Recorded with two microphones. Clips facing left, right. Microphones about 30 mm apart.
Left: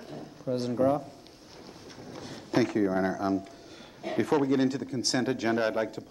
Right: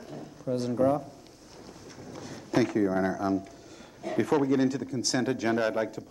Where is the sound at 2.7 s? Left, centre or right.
Centre.